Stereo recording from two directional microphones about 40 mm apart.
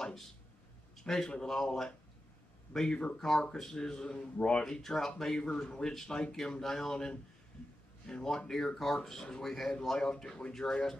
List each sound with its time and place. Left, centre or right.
0.9 s a man's voice: centre
3.5 s speech: centre; by 4.6 s left
4.6 s speech: centre